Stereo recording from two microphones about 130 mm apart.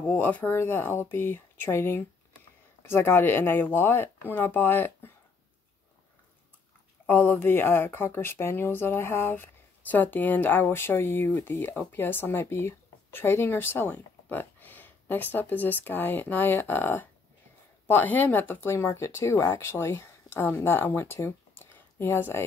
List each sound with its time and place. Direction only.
0.0 s speech: 10° left (ahead or behind)
7.1 s speech: 15° left (ahead or behind)